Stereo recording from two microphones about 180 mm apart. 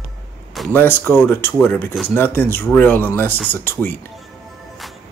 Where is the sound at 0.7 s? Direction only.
10° left (ahead or behind).